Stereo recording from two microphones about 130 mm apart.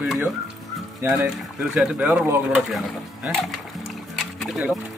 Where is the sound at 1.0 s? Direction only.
20° right (ahead or behind).